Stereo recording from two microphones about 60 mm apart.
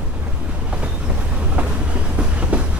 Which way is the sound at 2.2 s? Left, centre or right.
Centre.